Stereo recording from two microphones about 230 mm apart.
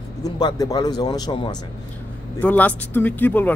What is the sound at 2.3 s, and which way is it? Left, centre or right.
A man's voice, centre.